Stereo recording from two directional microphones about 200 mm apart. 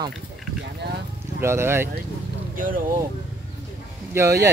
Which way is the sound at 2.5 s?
45° right (ahead or behind).